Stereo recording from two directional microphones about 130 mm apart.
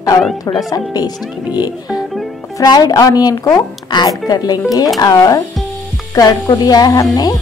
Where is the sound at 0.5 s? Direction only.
30° left (ahead or behind).